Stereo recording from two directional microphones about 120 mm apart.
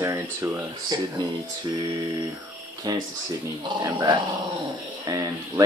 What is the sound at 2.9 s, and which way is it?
Speech, 35° right (ahead or behind).